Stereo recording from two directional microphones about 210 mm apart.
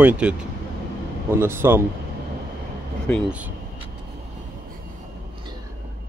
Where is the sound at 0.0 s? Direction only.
5° right (ahead or behind).